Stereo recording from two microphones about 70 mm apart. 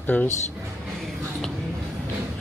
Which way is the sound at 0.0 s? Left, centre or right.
Left.